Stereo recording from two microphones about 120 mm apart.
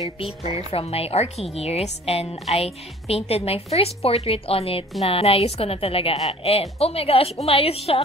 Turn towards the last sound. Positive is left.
turn(degrees=55)  # may be behind; listen again after turning